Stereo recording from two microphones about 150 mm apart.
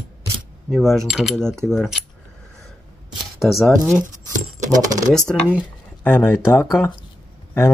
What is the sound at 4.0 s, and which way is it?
Keys jangling, 55° right (ahead or behind).